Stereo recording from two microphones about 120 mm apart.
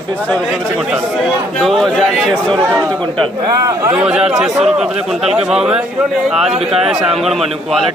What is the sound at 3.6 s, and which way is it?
Speech, 25° right (ahead or behind).